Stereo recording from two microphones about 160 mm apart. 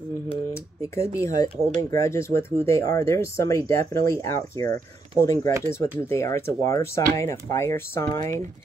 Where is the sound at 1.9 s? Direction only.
15° left (ahead or behind).